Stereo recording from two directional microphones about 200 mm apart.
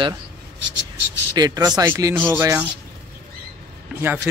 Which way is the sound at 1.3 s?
20° right (ahead or behind).